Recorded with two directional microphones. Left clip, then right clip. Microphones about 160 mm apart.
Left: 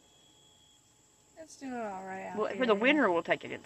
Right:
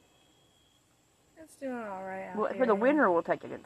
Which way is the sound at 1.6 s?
40° right (ahead or behind).